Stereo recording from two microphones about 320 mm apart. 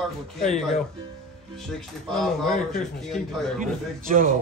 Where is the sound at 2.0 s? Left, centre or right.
Centre.